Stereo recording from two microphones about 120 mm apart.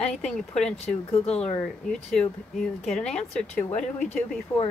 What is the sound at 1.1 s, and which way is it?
Speech, 60° left (ahead or behind).